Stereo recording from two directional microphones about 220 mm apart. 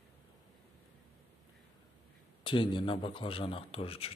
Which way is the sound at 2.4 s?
20° left (ahead or behind).